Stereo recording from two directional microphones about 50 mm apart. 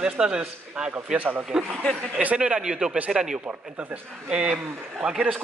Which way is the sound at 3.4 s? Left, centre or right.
Right.